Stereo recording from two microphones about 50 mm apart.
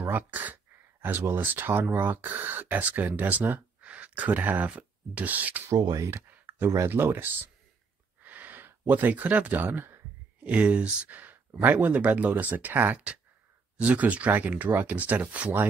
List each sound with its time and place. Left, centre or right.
0.1 s speech: right
1.0 s speech: right
5.7 s speech: right
6.5 s a sound: right
6.9 s speech: right
8.2 s a sound: right
9.6 s speech: right
10.4 s speech: right
11.1 s speech: right